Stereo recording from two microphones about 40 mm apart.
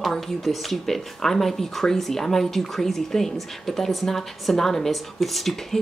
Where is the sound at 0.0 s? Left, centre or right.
Centre.